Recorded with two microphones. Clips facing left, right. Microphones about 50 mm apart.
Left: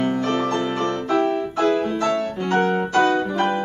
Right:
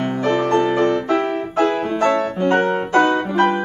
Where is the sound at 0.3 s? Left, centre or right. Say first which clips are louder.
Right 5 dB; right.